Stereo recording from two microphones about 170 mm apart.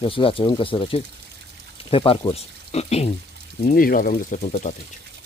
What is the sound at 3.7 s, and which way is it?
Speech, 55° left (ahead or behind).